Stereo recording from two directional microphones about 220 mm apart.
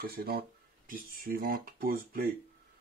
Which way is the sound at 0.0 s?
45° right (ahead or behind).